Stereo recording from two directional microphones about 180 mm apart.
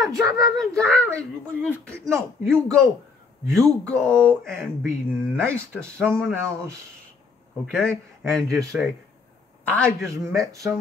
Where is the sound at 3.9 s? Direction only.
5° left (ahead or behind).